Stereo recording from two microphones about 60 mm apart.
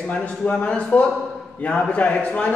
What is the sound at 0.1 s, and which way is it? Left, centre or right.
A man's voice, centre.